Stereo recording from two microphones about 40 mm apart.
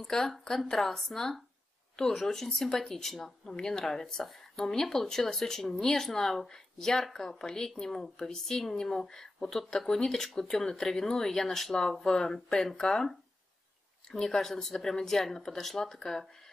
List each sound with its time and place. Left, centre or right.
0.0 s speech: centre